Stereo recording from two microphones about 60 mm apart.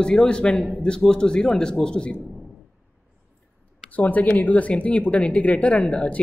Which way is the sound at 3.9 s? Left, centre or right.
Left.